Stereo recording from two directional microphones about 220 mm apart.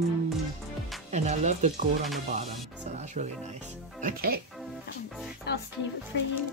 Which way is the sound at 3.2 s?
35° right (ahead or behind).